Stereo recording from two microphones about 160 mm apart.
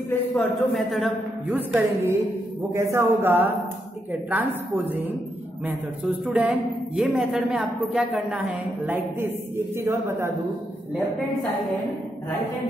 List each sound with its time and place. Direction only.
0.4 s a man's voice: centre (ahead or behind)
1.5 s a woman's voice: 10° right (ahead or behind)